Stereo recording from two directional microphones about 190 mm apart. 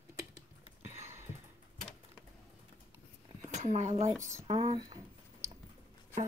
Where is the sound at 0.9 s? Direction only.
15° right (ahead or behind).